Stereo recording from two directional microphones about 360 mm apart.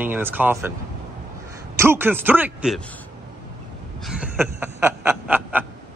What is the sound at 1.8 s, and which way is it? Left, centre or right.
A man's voice, centre.